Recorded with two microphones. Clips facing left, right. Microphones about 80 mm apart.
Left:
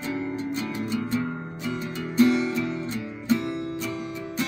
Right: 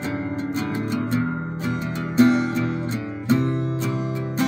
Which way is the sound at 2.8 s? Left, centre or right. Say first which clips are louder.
Right 3 dB; right.